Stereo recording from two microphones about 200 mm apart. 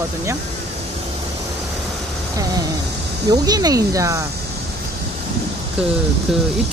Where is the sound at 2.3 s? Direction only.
20° right (ahead or behind).